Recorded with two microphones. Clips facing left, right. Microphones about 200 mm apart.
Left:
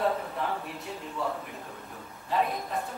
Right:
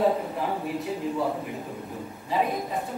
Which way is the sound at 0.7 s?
5° right (ahead or behind).